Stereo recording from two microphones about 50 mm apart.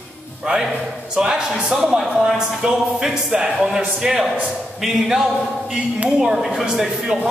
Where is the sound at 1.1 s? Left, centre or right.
Centre.